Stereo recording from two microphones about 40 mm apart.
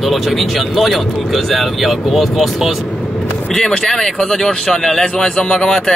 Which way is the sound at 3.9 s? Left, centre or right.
Centre.